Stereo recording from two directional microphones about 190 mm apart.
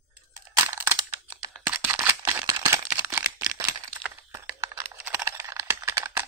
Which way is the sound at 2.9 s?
15° right (ahead or behind).